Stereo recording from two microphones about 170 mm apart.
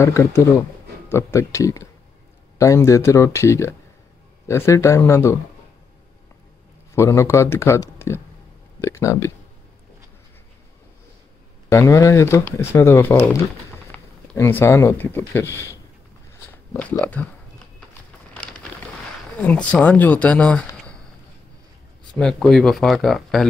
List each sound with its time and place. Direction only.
0.0 s speech: 15° left (ahead or behind)
6.9 s speech: 15° left (ahead or behind)
11.7 s speech: 15° left (ahead or behind)
17.0 s speech: 10° left (ahead or behind)
19.4 s speech: 10° left (ahead or behind)
22.1 s speech: 5° left (ahead or behind)